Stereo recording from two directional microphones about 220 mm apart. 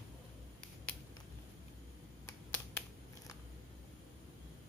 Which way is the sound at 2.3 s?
10° left (ahead or behind).